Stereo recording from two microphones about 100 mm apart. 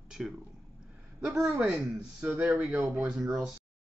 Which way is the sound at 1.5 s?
15° right (ahead or behind).